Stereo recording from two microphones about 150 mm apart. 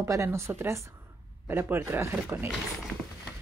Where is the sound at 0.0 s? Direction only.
20° right (ahead or behind).